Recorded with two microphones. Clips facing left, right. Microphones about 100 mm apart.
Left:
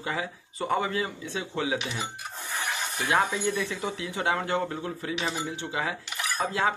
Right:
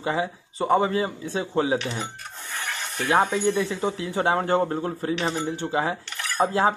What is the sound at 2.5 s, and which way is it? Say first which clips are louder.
Rub: even; 15° left (ahead or behind).